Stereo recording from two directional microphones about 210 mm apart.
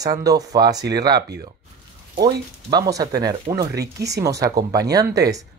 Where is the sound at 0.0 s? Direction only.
15° right (ahead or behind).